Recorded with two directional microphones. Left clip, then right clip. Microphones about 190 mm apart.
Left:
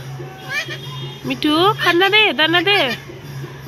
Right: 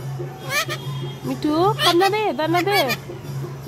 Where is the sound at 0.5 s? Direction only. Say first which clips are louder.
Even; 40° right (ahead or behind).